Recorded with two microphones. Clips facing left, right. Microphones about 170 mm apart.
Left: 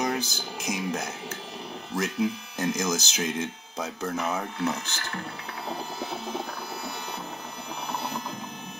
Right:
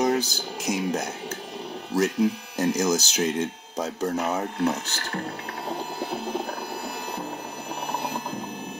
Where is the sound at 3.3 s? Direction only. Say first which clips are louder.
Right 4 dB; 35° right (ahead or behind).